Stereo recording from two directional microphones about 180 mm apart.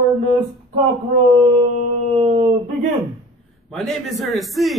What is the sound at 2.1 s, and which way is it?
Dog, 30° right (ahead or behind).